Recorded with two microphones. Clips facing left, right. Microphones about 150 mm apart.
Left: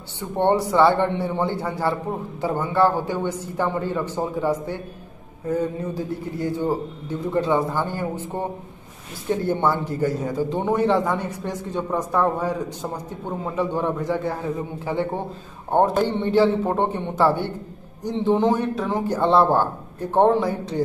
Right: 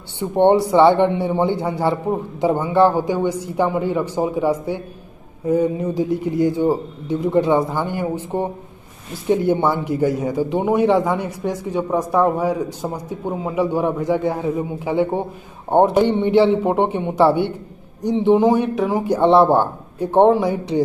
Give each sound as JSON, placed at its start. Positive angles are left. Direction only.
{"t": 0.2, "sound": "a man's voice", "side_deg": -15}